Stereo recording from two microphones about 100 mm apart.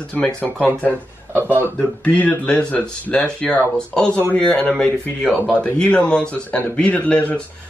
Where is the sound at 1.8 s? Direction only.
15° left (ahead or behind).